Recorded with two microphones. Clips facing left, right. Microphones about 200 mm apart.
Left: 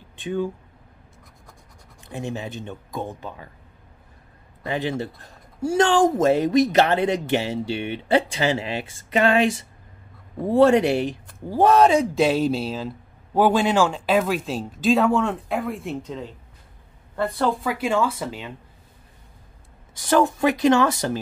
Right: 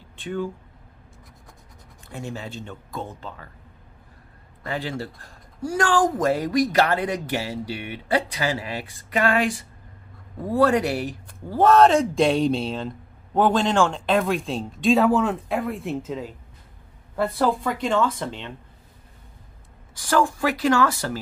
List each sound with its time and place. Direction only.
0.1 s speech: 15° left (ahead or behind)
2.0 s speech: 20° left (ahead or behind)
4.6 s speech: 20° left (ahead or behind)
20.0 s speech: 20° left (ahead or behind)